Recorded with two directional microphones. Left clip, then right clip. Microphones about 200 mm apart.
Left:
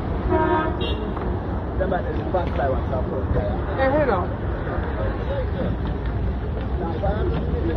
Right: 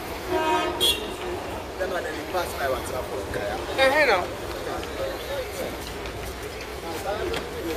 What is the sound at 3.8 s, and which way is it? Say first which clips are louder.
Speech: right 1 dB; 45° right (ahead or behind).